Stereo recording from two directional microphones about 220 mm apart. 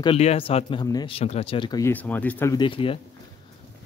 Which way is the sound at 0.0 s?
25° left (ahead or behind).